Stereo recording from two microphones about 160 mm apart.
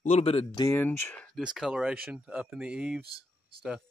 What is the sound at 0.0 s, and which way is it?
Speech, 40° left (ahead or behind).